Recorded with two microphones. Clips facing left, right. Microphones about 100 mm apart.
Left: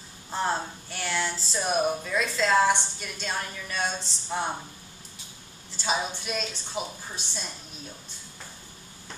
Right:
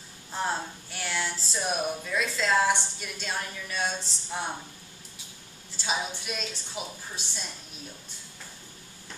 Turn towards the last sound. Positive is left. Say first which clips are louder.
# left 2 dB
turn(degrees=0)  # may be behind; listen again after turning